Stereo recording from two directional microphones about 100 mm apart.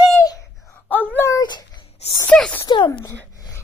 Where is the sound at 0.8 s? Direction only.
15° left (ahead or behind).